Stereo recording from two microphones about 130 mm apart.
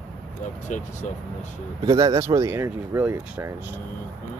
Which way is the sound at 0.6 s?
75° left (ahead or behind).